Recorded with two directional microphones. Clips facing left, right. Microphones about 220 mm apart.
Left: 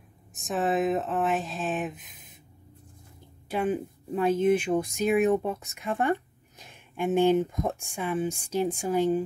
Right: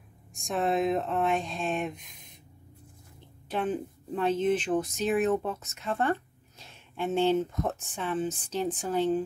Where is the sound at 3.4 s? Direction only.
10° left (ahead or behind).